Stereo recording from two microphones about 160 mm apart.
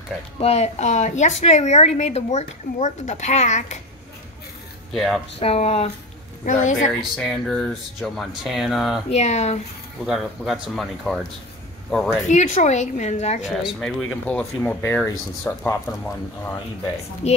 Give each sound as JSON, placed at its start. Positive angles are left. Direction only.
{"t": 0.4, "sound": "a woman's voice", "side_deg": 40}
{"t": 4.9, "sound": "speech", "side_deg": 0}
{"t": 5.4, "sound": "speech", "side_deg": 40}
{"t": 6.4, "sound": "a woman's voice", "side_deg": 50}
{"t": 7.2, "sound": "speech", "side_deg": 5}
{"t": 9.1, "sound": "a woman's voice", "side_deg": 45}
{"t": 10.0, "sound": "speech", "side_deg": 0}
{"t": 12.3, "sound": "a woman's voice", "side_deg": 45}
{"t": 13.7, "sound": "speech", "side_deg": 5}
{"t": 17.2, "sound": "a woman's voice", "side_deg": 45}